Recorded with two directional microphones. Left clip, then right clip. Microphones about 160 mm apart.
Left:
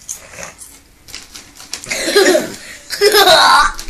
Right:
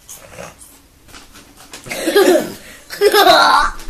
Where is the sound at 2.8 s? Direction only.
40° right (ahead or behind).